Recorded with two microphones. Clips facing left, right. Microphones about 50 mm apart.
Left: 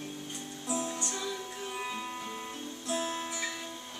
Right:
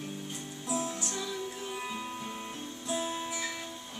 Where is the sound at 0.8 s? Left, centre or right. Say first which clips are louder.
Even; centre.